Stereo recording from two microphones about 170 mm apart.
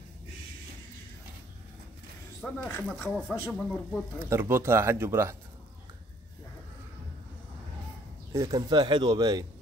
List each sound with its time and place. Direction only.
2.4 s speech: 10° left (ahead or behind)
3.1 s speech: centre (ahead or behind)
4.3 s speech: 15° right (ahead or behind)
8.3 s speech: 20° right (ahead or behind)